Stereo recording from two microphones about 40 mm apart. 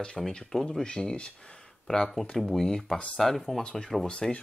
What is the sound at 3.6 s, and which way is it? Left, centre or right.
Speech, centre.